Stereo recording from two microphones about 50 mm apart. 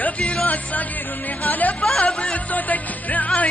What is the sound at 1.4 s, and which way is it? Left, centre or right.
Music, left.